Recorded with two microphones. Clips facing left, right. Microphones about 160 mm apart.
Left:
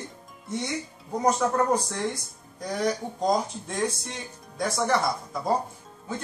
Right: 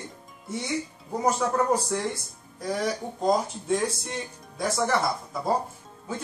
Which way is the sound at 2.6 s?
5° right (ahead or behind).